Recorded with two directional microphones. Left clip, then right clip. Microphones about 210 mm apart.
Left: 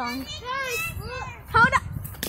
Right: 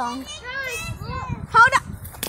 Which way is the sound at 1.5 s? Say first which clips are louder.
Right 4 dB; 25° right (ahead or behind).